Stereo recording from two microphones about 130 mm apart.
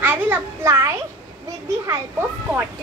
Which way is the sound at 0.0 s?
15° right (ahead or behind).